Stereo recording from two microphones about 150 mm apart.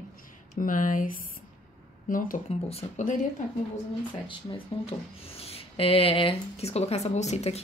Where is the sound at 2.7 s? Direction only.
45° left (ahead or behind).